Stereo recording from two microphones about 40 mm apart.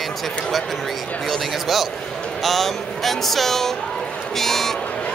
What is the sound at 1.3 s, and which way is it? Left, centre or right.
Speech, centre.